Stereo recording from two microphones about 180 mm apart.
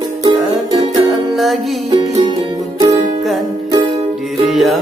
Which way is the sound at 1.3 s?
Centre (ahead or behind).